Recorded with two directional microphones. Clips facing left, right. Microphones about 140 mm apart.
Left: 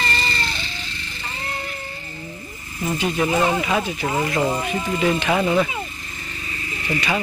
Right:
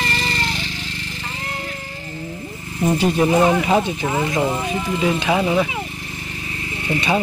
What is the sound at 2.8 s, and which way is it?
Speech, 30° right (ahead or behind).